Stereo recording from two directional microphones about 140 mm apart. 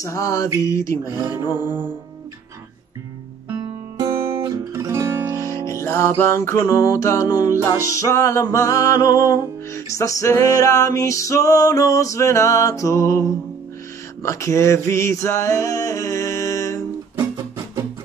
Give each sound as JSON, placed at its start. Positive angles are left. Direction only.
{"t": 0.0, "sound": "music", "side_deg": 25}
{"t": 1.6, "sound": "music", "side_deg": -15}
{"t": 3.5, "sound": "music", "side_deg": -30}
{"t": 4.1, "sound": "music", "side_deg": -15}
{"t": 5.4, "sound": "music", "side_deg": 20}
{"t": 14.2, "sound": "male singing", "side_deg": 20}